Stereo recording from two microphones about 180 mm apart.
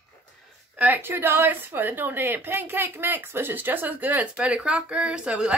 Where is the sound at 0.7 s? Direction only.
10° right (ahead or behind).